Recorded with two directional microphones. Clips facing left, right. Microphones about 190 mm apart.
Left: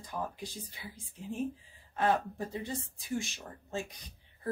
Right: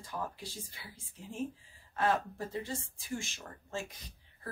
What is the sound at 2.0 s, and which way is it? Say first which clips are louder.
Speech: left 2 dB; 20° left (ahead or behind).